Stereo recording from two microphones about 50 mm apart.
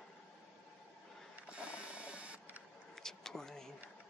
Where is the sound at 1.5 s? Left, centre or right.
Right.